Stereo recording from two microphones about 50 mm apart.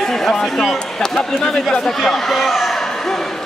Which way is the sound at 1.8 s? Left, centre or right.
Centre.